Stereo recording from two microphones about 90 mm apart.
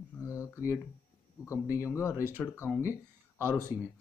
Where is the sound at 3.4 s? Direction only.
30° left (ahead or behind).